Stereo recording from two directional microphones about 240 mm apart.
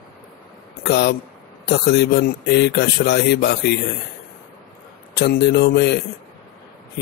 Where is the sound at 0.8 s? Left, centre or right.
Left.